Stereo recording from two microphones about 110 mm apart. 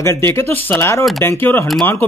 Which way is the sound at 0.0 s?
25° left (ahead or behind).